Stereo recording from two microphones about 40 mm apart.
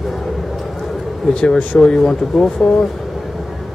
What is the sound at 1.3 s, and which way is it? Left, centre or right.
Speech, left.